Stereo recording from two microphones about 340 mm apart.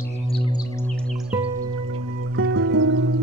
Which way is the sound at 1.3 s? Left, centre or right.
Centre.